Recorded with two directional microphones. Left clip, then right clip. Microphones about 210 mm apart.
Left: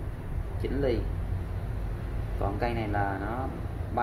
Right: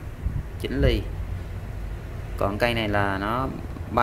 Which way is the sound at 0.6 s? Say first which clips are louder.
Right 4 dB; 35° right (ahead or behind).